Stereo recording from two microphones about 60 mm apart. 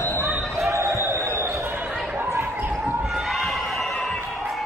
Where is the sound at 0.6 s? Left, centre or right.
Right.